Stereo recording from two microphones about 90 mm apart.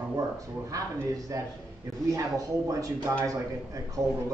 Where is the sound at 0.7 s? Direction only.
40° right (ahead or behind).